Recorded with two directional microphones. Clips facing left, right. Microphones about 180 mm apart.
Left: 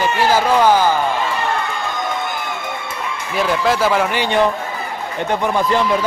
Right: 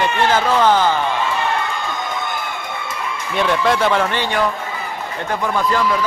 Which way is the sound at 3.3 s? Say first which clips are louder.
Even; centre (ahead or behind).